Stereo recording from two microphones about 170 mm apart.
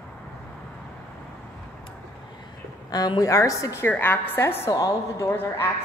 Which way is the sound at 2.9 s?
25° left (ahead or behind).